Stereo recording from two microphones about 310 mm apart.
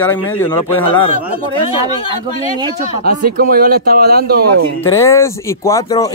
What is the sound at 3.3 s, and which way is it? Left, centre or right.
Speech, right.